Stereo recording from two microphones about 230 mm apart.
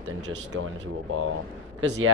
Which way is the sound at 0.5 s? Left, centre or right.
Right.